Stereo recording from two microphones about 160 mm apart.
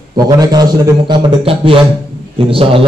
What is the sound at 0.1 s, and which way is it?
A man's voice, 25° right (ahead or behind).